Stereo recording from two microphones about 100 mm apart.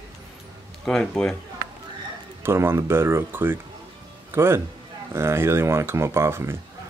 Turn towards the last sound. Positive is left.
turn(degrees=-25)  # may be behind; listen again after turning